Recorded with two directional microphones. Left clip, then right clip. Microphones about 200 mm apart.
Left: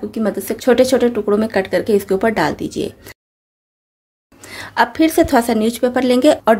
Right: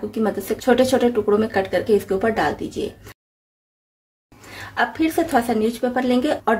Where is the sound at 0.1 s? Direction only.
40° left (ahead or behind).